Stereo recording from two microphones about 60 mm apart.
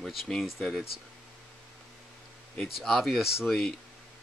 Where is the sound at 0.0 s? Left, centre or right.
Centre.